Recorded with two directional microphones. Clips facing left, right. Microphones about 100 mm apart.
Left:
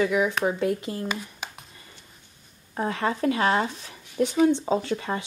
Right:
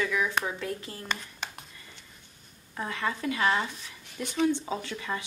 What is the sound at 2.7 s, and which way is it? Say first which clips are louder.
Speech: left 6 dB; 35° left (ahead or behind).